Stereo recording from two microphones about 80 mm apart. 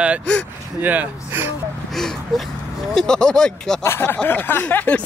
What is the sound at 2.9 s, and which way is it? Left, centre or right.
Speech, centre.